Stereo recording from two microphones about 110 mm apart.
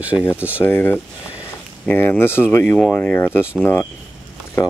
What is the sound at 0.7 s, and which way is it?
Speech, 20° left (ahead or behind).